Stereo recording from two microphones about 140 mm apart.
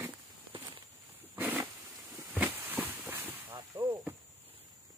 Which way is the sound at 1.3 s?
10° right (ahead or behind).